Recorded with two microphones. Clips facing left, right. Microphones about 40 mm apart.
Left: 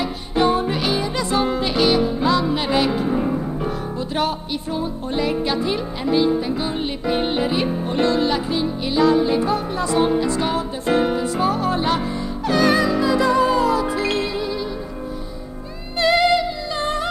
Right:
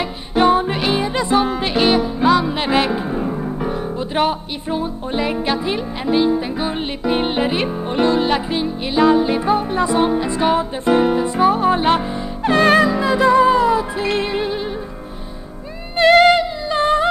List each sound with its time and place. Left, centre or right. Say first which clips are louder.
0.0 s music: right 3 dB; right
12.8 s music: right 3 dB; right
16.1 s music: right 6 dB; right
16.3 s music: right 4 dB; right